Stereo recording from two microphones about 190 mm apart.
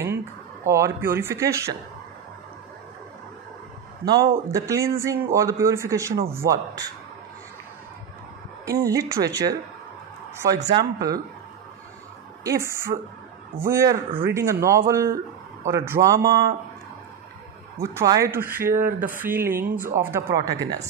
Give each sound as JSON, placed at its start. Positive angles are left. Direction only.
{"t": 0.7, "sound": "speech", "side_deg": -15}
{"t": 4.0, "sound": "a man's voice", "side_deg": -20}
{"t": 8.6, "sound": "speech", "side_deg": -15}
{"t": 12.4, "sound": "speech", "side_deg": -15}
{"t": 17.9, "sound": "speech", "side_deg": -15}